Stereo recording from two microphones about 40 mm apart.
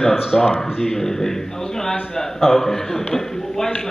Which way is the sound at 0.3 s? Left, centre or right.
Centre.